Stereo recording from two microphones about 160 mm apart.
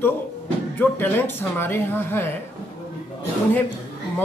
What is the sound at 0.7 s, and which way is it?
Speech, 10° left (ahead or behind).